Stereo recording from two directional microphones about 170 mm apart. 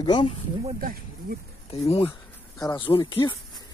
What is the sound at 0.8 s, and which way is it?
Speech, 60° right (ahead or behind).